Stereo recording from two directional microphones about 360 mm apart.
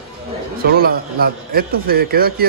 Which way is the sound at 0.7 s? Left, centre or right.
Right.